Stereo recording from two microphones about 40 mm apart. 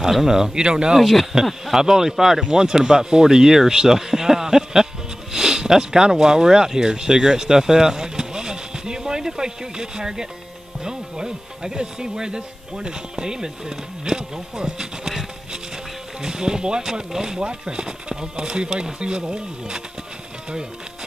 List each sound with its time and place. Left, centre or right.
0.0 s speech: centre
0.6 s speech: right
0.9 s speech: centre
1.3 s speech: centre